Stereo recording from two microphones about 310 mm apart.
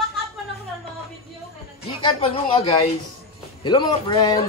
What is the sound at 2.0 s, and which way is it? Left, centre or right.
A man's voice, centre.